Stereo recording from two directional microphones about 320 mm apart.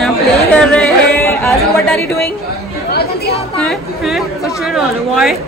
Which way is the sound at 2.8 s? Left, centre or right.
Left.